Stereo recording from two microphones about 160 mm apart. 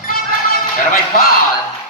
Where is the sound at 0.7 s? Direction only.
65° left (ahead or behind).